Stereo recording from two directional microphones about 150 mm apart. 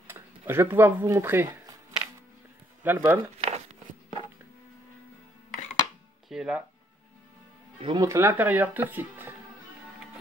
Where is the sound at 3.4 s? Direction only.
45° right (ahead or behind).